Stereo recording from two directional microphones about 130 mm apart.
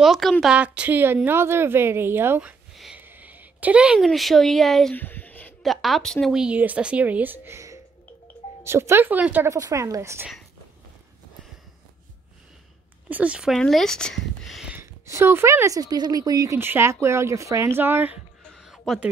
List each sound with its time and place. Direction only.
0.0 s a woman's voice: centre (ahead or behind); by 2.5 s 15° right (ahead or behind)
2.7 s whispering: centre (ahead or behind)
3.0 s speech: 15° right (ahead or behind)
4.9 s a sound: 15° left (ahead or behind)
5.6 s a woman's voice: centre (ahead or behind)
9.5 s speech: 25° right (ahead or behind)
13.1 s a woman's voice: 10° right (ahead or behind)
14.8 s speech: 20° right (ahead or behind)
18.4 s a sound: centre (ahead or behind)